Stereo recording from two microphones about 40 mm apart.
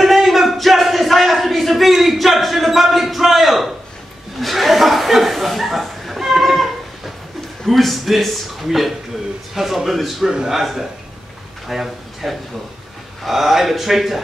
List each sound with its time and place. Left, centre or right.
0.0 s a sound: centre
4.4 s chuckle: centre
7.6 s a man's voice: centre
10.2 s a man's voice: centre